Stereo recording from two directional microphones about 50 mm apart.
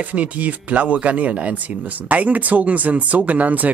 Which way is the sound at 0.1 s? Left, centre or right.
Right.